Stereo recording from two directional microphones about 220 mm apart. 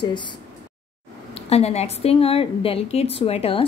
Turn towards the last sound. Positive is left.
turn(degrees=25)  # may be behind; listen again after turning